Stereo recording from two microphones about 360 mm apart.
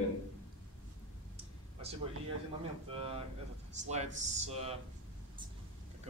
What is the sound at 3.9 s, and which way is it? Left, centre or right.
Speech, centre.